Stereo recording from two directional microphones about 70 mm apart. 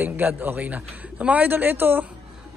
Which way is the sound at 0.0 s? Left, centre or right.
Right.